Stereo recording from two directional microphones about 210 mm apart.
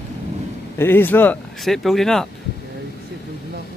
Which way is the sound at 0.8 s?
10° left (ahead or behind).